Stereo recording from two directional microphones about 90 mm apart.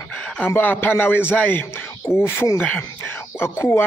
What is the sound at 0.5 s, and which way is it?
Speech, 20° left (ahead or behind).